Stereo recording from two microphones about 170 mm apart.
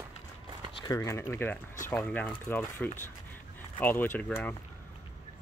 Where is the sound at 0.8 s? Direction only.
20° left (ahead or behind).